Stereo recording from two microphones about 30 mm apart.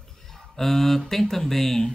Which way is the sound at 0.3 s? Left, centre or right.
Centre.